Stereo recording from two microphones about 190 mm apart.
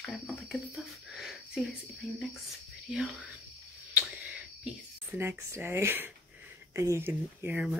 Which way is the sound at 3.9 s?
10° right (ahead or behind).